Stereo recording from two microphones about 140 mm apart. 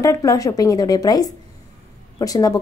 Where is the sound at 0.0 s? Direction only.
25° left (ahead or behind).